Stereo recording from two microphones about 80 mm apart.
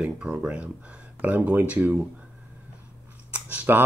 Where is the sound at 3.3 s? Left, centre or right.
Centre.